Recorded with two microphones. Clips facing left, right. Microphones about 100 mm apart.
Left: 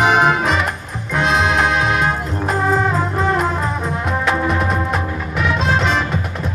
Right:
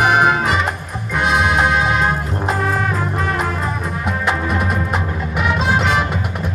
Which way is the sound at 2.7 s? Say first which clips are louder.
Left 3 dB; 20° left (ahead or behind).